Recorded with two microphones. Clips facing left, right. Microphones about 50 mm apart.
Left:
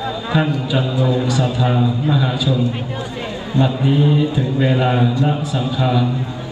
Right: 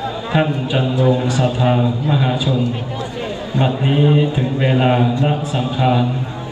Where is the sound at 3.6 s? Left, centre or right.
Right.